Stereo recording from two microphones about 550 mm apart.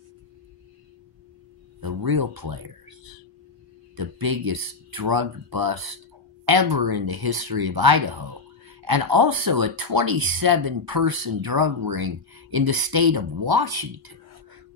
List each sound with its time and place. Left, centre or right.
1.8 s speech: right
3.9 s speech: right